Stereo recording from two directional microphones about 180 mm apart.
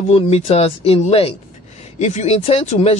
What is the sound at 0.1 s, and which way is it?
Speech, 35° left (ahead or behind).